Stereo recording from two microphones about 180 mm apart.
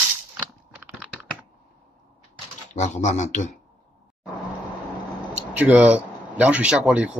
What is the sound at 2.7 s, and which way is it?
Speech, 40° left (ahead or behind).